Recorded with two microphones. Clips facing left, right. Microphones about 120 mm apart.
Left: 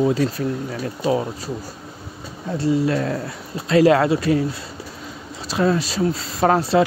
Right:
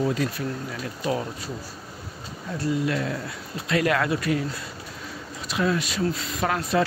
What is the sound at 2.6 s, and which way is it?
Speech, 30° left (ahead or behind).